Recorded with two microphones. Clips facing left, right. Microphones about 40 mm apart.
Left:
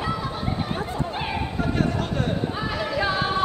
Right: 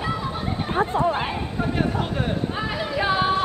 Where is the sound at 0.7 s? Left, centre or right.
Right.